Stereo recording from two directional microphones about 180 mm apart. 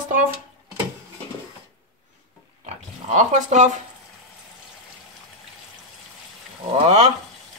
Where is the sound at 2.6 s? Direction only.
40° right (ahead or behind).